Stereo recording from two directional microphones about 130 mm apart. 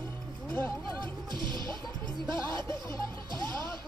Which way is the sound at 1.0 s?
35° right (ahead or behind).